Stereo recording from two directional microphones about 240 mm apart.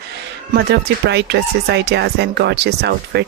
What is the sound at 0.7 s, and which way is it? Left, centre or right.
Speech, right.